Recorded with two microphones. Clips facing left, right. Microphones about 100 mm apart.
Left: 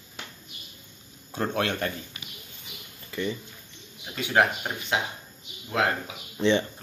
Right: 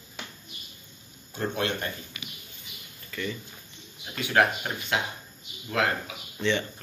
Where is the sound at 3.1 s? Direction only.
25° left (ahead or behind).